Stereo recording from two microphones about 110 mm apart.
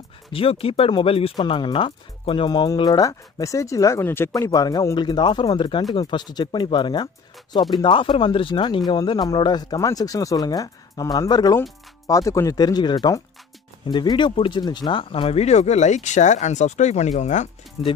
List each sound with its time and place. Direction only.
0.3 s speech: 55° left (ahead or behind); by 17.5 s 90° left
17.8 s speech: 60° left (ahead or behind)